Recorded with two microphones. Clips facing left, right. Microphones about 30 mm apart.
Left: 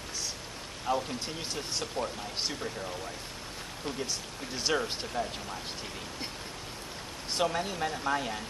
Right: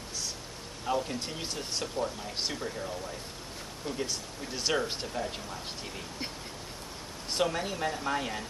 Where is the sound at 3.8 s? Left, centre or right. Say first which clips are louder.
Even; left.